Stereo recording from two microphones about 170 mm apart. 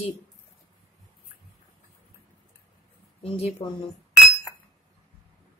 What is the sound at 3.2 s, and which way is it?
Speech, 35° left (ahead or behind).